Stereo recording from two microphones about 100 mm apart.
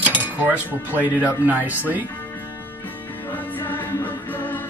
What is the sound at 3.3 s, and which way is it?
Music, 20° left (ahead or behind).